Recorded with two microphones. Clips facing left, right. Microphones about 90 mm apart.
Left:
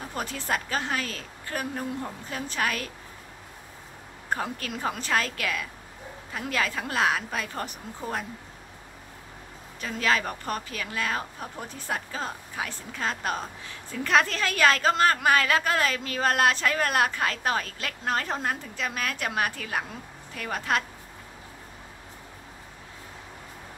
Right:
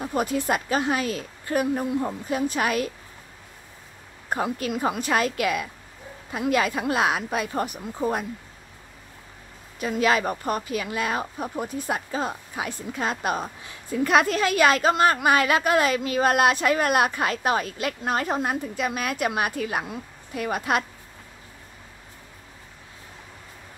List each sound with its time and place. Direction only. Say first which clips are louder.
0.0 s a woman's voice: right 9 dB; 15° right (ahead or behind)
4.3 s a woman's voice: right 5 dB; 15° right (ahead or behind)
9.8 s a woman's voice: right 4 dB; 15° right (ahead or behind)